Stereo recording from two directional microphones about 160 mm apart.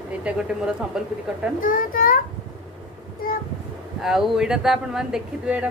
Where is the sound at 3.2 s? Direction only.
65° left (ahead or behind).